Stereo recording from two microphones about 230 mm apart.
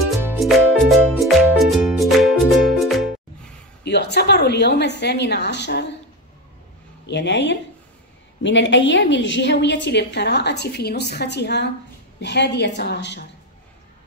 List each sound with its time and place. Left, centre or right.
0.0 s music: centre
3.8 s a woman's voice: left
7.1 s a woman's voice: left